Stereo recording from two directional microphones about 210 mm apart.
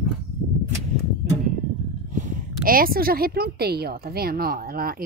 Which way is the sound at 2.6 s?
45° right (ahead or behind).